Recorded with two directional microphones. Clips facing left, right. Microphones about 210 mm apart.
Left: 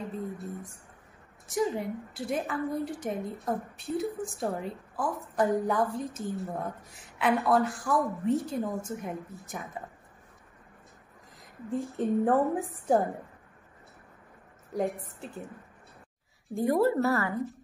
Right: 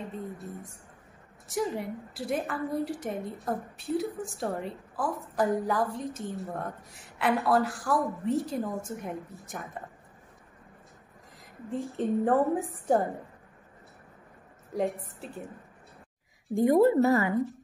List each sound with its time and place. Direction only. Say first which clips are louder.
1.5 s a woman's voice: left 2 dB; centre (ahead or behind)
11.7 s a woman's voice: left 1 dB; centre (ahead or behind)
14.7 s a woman's voice: right 1 dB; centre (ahead or behind)
16.5 s a woman's voice: right 4 dB; 20° right (ahead or behind)